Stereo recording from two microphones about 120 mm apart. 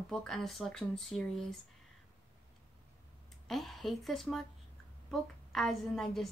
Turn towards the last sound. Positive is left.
turn(degrees=5)  # may be behind; listen again after turning